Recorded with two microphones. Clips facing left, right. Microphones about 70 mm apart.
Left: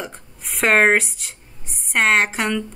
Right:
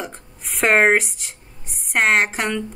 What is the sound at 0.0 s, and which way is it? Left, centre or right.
A woman's voice, centre.